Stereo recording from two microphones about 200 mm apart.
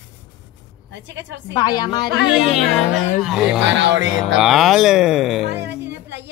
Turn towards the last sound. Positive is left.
turn(degrees=-60)  # may be behind; listen again after turning